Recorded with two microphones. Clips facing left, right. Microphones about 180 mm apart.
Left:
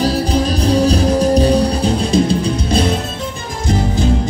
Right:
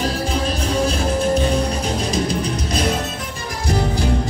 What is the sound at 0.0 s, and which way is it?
Music, 35° left (ahead or behind).